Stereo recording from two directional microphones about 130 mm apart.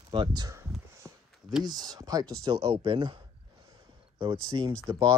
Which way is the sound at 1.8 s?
30° right (ahead or behind).